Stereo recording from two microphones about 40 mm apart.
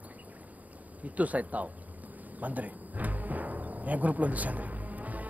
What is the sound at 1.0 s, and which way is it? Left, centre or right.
Speech, right.